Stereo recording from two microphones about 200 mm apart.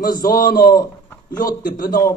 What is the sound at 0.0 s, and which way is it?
A man's voice, 45° left (ahead or behind).